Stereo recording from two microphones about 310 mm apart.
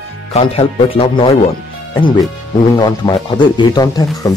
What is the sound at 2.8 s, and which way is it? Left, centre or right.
Speech, centre.